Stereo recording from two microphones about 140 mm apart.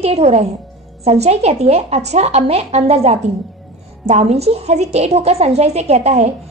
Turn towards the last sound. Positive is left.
turn(degrees=-50)  # may be behind; listen again after turning